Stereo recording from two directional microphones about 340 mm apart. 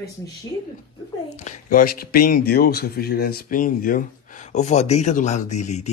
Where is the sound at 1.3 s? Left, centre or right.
Centre.